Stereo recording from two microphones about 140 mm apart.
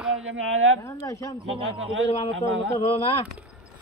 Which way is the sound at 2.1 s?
40° left (ahead or behind).